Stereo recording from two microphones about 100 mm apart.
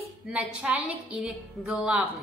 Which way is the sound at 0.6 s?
10° right (ahead or behind).